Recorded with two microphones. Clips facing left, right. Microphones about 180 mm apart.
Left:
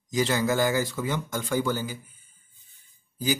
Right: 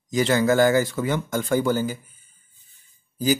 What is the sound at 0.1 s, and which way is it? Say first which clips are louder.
Speech: right 5 dB; 60° right (ahead or behind).